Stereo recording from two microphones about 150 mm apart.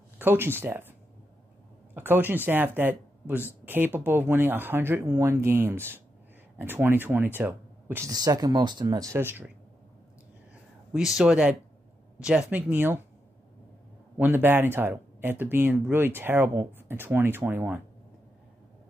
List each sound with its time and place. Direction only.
0.2 s speech: 15° right (ahead or behind)
2.0 s speech: 15° right (ahead or behind)
8.1 s speech: 25° right (ahead or behind)
10.5 s a sound: 5° right (ahead or behind)
12.2 s speech: 5° right (ahead or behind)
14.1 s speech: 15° right (ahead or behind)